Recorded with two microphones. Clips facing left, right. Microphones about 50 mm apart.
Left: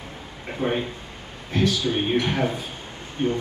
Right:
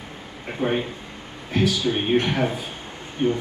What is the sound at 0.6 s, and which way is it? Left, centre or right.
Speech, centre.